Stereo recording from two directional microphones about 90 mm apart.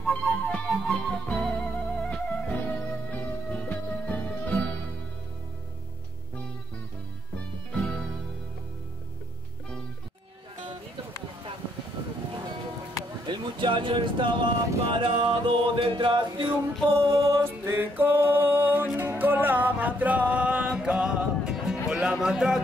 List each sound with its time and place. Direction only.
0.0 s music: 10° left (ahead or behind)
7.7 s music: 10° left (ahead or behind)
13.3 s speech: 65° right (ahead or behind)
17.0 s music: 35° right (ahead or behind); by 22.1 s 10° right (ahead or behind)
22.2 s speech: 5° right (ahead or behind)